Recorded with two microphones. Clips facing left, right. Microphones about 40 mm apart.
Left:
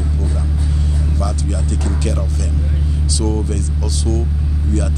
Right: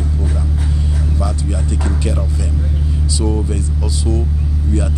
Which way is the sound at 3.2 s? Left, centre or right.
Centre.